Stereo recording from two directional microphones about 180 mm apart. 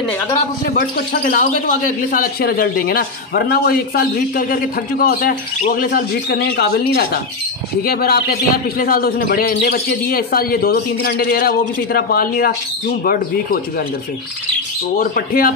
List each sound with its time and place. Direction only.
0.7 s speech: 50° left (ahead or behind)
15.0 s speech: 55° left (ahead or behind)